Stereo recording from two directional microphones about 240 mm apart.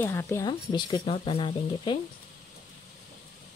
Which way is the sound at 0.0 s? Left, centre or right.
Centre.